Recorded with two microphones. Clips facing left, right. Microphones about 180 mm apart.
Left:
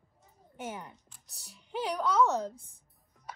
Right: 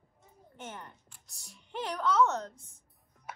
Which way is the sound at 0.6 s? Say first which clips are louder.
Left 5 dB; 10° left (ahead or behind).